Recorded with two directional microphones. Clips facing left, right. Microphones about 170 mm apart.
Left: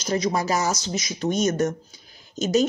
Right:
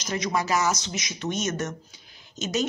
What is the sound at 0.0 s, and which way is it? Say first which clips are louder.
Speech: left 4 dB; 35° left (ahead or behind).